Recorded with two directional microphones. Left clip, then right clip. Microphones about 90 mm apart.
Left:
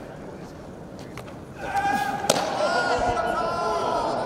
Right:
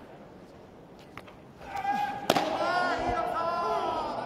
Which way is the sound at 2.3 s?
20° left (ahead or behind).